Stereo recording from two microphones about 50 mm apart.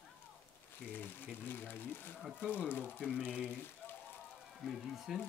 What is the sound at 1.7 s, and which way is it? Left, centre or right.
Speech, left.